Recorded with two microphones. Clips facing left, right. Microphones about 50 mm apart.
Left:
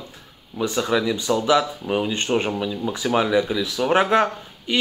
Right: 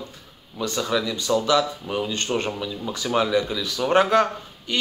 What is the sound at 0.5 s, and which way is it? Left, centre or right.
Speech, centre.